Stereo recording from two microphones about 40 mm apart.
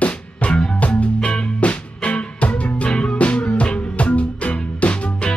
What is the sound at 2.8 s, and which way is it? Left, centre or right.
Music, left.